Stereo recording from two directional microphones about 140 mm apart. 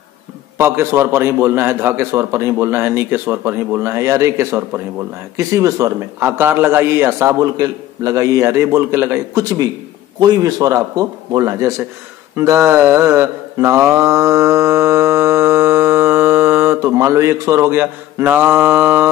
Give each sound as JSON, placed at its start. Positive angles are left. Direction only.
{"t": 0.6, "sound": "a man's voice", "side_deg": -20}
{"t": 12.4, "sound": "mantra", "side_deg": -20}